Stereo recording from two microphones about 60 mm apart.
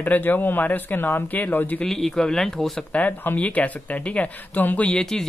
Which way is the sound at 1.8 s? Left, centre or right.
Centre.